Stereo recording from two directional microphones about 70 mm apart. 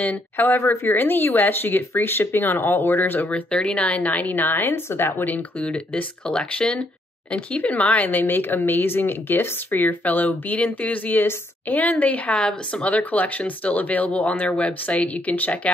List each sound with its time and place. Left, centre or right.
0.0 s speech: left
12.4 s speech: centre
12.9 s speech: left